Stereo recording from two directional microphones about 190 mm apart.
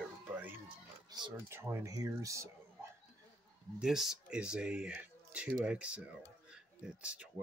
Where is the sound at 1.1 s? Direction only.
20° right (ahead or behind).